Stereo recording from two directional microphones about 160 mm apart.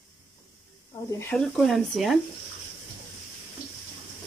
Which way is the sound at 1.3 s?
5° left (ahead or behind).